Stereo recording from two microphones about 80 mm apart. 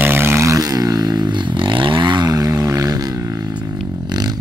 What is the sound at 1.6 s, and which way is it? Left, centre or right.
Vehicle, right.